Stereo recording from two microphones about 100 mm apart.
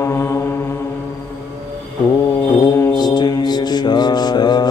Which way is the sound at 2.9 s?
45° left (ahead or behind).